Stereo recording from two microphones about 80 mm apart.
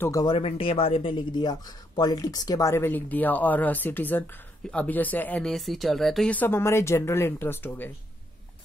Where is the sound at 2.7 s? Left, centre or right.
Left.